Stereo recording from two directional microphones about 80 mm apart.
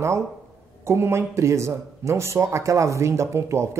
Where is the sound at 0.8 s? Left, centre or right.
Right.